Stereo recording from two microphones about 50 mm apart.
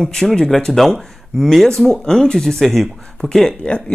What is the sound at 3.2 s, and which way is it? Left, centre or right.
Speech, centre.